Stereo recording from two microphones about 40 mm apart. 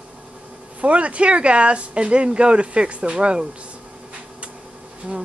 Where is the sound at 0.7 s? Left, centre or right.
Right.